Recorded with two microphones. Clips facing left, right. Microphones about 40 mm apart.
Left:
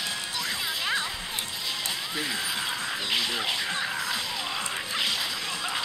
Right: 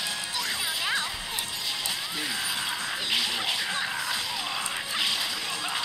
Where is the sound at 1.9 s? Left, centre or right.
Centre.